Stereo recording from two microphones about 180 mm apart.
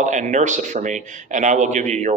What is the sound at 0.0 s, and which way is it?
A man's voice, 45° right (ahead or behind).